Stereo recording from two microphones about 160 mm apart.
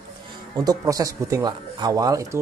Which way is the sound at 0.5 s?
20° right (ahead or behind).